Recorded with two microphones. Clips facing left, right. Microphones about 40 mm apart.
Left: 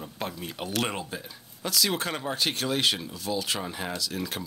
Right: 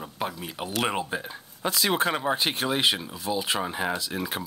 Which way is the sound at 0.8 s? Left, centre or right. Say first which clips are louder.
Right 5 dB; centre.